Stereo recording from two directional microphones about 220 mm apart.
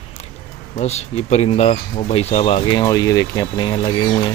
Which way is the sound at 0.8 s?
30° left (ahead or behind).